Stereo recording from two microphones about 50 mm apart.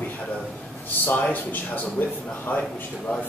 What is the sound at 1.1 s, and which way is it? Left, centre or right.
Speech, left.